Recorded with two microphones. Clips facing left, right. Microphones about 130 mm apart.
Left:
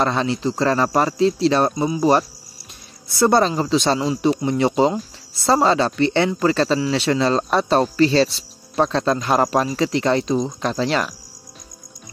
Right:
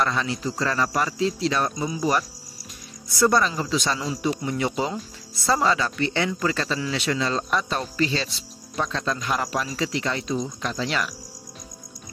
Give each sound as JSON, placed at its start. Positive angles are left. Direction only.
{"t": 0.0, "sound": "speech", "side_deg": 30}